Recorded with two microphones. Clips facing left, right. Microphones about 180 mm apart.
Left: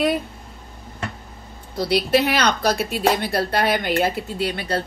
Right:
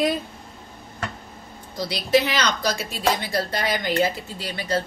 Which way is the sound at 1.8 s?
60° left (ahead or behind).